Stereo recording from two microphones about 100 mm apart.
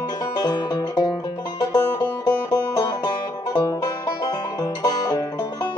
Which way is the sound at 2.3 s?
40° left (ahead or behind).